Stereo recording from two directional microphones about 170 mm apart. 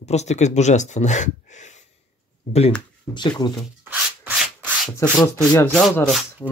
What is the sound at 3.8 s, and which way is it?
Rub, 10° right (ahead or behind).